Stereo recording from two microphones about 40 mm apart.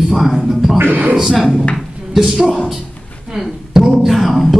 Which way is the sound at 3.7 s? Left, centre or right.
Centre.